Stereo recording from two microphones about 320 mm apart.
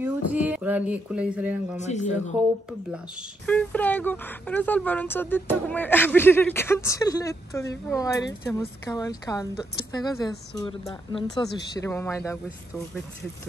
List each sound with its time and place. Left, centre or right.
0.0 s speech: centre
1.8 s speech: left
2.9 s a woman's voice: centre